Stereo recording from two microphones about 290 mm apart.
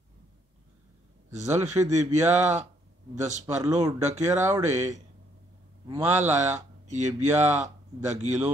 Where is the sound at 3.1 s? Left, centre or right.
Right.